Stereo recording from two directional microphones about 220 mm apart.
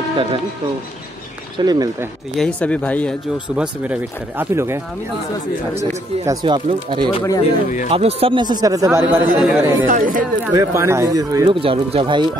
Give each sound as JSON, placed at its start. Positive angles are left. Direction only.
{"t": 1.6, "sound": "speech", "side_deg": -15}
{"t": 2.3, "sound": "speech", "side_deg": 5}
{"t": 3.5, "sound": "speech", "side_deg": -5}
{"t": 7.1, "sound": "speech", "side_deg": 20}
{"t": 7.9, "sound": "speech", "side_deg": -25}
{"t": 9.8, "sound": "speech", "side_deg": -35}
{"t": 10.4, "sound": "speech", "side_deg": -15}